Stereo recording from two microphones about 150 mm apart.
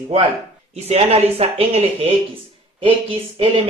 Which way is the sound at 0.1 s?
45° right (ahead or behind).